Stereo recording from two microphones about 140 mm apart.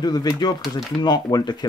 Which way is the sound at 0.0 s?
30° left (ahead or behind).